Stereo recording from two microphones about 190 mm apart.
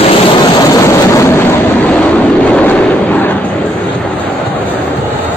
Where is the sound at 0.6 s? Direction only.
15° left (ahead or behind).